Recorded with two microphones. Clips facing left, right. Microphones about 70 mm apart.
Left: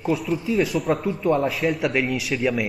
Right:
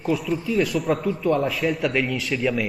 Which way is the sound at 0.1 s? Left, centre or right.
Centre.